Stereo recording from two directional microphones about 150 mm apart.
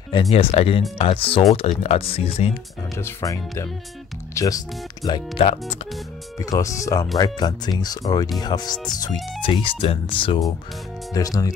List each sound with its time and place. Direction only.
0.1 s speech: 40° left (ahead or behind)
3.0 s speech: 20° left (ahead or behind)
5.4 s speech: 45° left (ahead or behind)
6.4 s speech: 20° left (ahead or behind)
11.1 s speech: 25° left (ahead or behind)